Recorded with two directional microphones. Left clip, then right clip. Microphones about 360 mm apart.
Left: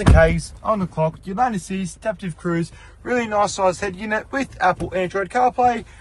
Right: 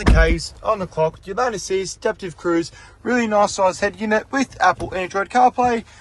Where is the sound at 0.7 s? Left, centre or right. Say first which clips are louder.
Right 1 dB; right.